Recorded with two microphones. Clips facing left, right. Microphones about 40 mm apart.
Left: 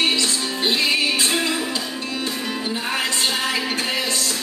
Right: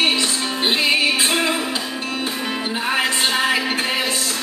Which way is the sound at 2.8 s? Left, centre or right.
Right.